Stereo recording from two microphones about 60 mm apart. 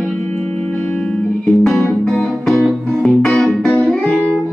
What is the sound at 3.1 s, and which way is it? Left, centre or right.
Organ, centre.